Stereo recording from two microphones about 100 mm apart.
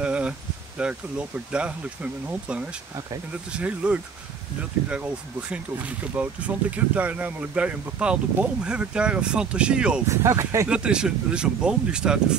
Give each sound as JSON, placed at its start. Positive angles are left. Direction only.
{"t": 0.0, "sound": "a sound", "side_deg": -10}
{"t": 0.7, "sound": "speech", "side_deg": -10}
{"t": 10.0, "sound": "speech", "side_deg": -30}
{"t": 10.7, "sound": "speech", "side_deg": -10}